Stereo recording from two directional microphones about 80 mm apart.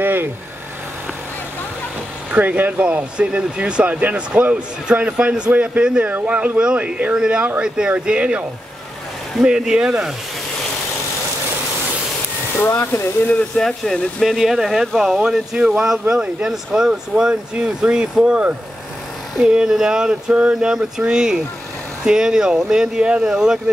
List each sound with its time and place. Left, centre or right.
0.0 s vehicle: right
2.3 s speech: right
9.4 s speech: centre
12.8 s speech: left
13.3 s speech: centre